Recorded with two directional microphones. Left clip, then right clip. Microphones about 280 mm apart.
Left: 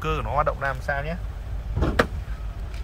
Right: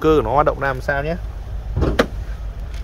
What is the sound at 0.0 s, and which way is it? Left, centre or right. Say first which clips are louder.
Speech: right 10 dB; right.